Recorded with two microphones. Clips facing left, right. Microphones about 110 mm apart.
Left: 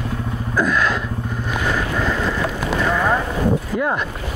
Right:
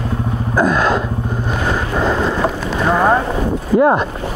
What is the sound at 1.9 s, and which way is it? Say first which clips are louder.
Boat: right 5 dB; 30° right (ahead or behind).